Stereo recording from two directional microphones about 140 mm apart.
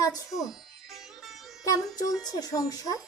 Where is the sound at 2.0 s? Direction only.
25° left (ahead or behind).